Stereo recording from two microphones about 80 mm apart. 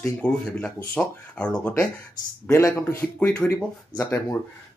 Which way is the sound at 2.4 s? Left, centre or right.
Left.